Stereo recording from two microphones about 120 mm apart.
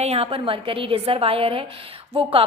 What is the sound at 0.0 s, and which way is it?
A woman's voice, 55° right (ahead or behind).